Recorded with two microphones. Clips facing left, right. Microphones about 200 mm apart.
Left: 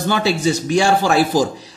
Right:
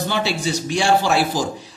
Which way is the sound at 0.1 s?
45° left (ahead or behind).